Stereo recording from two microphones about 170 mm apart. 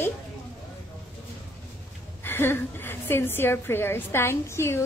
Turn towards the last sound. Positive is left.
turn(degrees=15)  # may be behind; listen again after turning